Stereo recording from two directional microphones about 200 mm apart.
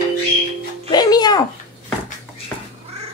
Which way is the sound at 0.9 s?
20° left (ahead or behind).